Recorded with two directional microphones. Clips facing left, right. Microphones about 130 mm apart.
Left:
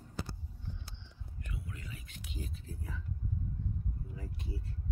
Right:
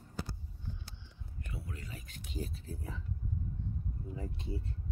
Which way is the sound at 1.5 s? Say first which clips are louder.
Right 1 dB; 35° right (ahead or behind).